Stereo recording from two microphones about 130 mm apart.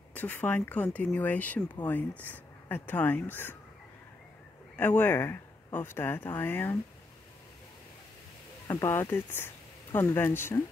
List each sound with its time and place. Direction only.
0.1 s speech: 10° left (ahead or behind)
4.7 s speech: 15° left (ahead or behind)
8.6 s speech: 20° left (ahead or behind)